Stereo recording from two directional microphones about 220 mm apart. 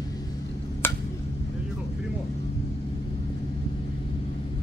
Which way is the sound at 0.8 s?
10° left (ahead or behind).